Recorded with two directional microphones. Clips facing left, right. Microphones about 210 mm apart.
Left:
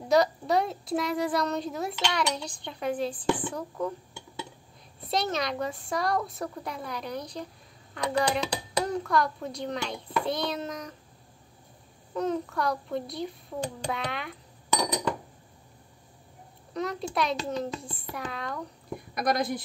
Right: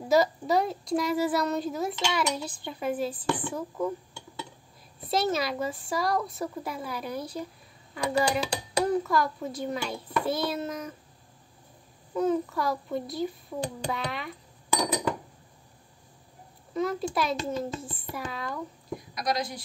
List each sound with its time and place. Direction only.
0.0 s a child's voice: 5° right (ahead or behind)
5.0 s a child's voice: 5° right (ahead or behind)
12.1 s a child's voice: 5° right (ahead or behind)
16.7 s a child's voice: centre (ahead or behind)
18.9 s a woman's voice: 55° left (ahead or behind)